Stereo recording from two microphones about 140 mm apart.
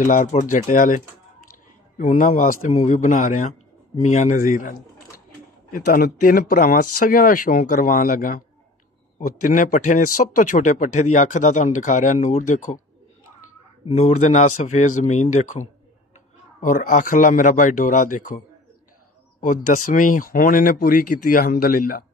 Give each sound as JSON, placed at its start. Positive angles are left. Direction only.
{"t": 0.0, "sound": "a man's voice", "side_deg": 75}
{"t": 0.3, "sound": "a man's voice", "side_deg": 60}
{"t": 5.7, "sound": "a man's voice", "side_deg": 90}
{"t": 13.9, "sound": "a man's voice", "side_deg": 50}
{"t": 16.6, "sound": "a man's voice", "side_deg": 65}
{"t": 19.4, "sound": "speech", "side_deg": 65}